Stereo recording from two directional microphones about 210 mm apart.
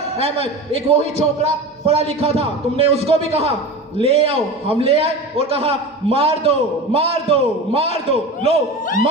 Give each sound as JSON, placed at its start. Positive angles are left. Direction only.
{"t": 0.2, "sound": "a man's voice", "side_deg": -25}